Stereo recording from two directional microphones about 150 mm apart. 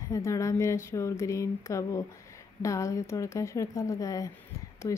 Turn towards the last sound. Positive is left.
turn(degrees=25)  # may be behind; listen again after turning